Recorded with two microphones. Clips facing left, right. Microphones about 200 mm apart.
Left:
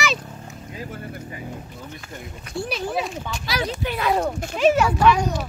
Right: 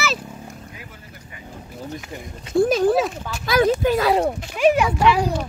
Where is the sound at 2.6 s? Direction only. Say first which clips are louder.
Right 10 dB; 45° right (ahead or behind).